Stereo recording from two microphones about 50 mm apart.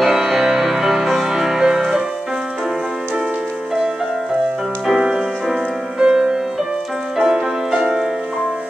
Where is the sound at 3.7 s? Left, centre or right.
Centre.